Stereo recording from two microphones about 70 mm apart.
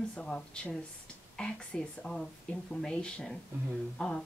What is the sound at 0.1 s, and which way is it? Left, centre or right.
Speech, centre.